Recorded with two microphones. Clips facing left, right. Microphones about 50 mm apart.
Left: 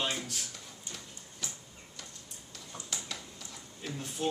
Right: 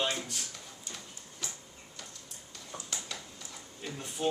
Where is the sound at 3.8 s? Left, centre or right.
Centre.